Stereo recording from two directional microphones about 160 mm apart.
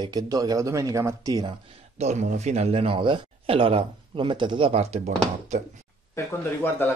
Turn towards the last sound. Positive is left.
turn(degrees=15)  # may be behind; listen again after turning